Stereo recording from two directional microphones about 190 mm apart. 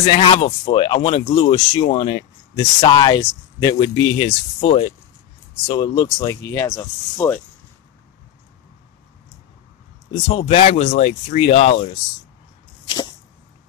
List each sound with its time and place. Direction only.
0.0 s speech: 30° left (ahead or behind); by 7.3 s 15° left (ahead or behind)
10.2 s speech: 30° left (ahead or behind)